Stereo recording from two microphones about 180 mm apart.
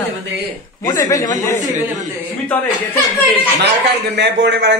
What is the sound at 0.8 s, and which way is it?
Speech, 20° left (ahead or behind).